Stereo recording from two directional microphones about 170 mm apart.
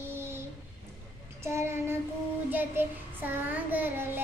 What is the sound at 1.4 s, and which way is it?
Child singing, 15° right (ahead or behind).